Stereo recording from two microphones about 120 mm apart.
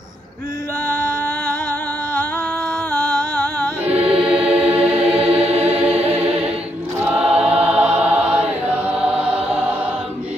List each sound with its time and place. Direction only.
3.8 s choir: 10° right (ahead or behind)
5.2 s music: 55° right (ahead or behind)
5.6 s music: 15° right (ahead or behind)
7.1 s choir: 10° right (ahead or behind)
7.6 s music: 10° right (ahead or behind)